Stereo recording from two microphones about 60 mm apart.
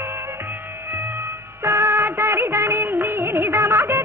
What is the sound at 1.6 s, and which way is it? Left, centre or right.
Music of bollywood, right.